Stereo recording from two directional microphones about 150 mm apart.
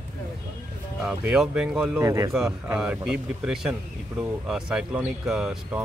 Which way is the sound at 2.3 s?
5° right (ahead or behind).